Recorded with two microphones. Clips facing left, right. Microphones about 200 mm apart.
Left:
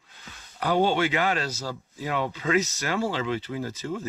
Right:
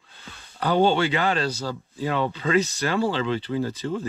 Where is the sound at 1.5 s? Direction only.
30° right (ahead or behind).